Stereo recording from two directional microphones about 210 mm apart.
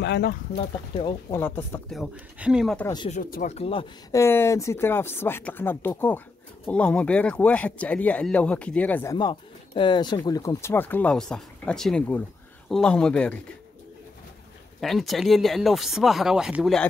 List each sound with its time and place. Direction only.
0.0 s speech: 50° left (ahead or behind)
0.6 s speech: 20° left (ahead or behind)
1.4 s speech: 10° left (ahead or behind)
3.1 s speech: 40° left (ahead or behind)
3.5 s speech: 25° left (ahead or behind)
4.1 s speech: 10° left (ahead or behind)
14.8 s speech: centre (ahead or behind)